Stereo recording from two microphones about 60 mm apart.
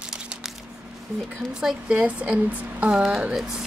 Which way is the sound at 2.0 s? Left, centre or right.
Right.